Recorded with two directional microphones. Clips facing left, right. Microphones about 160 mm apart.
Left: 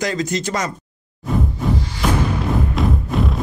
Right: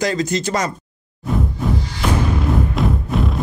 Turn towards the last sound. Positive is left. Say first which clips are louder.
# even
turn(degrees=0)  # may be behind; listen again after turning